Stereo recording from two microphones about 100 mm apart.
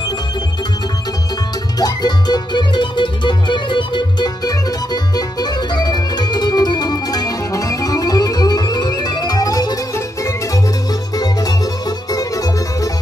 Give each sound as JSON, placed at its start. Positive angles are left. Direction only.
{"t": 1.8, "sound": "music", "side_deg": 40}